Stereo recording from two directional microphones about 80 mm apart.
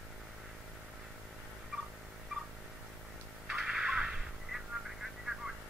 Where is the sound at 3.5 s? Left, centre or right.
Centre.